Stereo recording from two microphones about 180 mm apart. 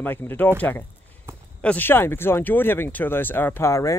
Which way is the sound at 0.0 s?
10° left (ahead or behind).